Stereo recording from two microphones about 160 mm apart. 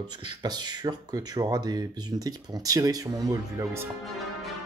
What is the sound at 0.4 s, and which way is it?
Speech, 25° right (ahead or behind).